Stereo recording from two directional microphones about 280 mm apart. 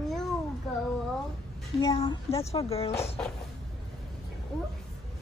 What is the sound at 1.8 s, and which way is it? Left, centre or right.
Speech, centre.